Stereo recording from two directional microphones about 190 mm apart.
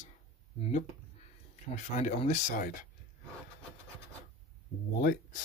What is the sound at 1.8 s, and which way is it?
Speech, 40° left (ahead or behind).